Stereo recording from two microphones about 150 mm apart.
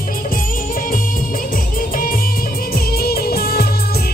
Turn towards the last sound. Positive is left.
turn(degrees=90)